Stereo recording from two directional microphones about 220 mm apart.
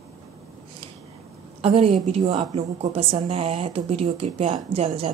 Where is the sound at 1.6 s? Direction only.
25° right (ahead or behind).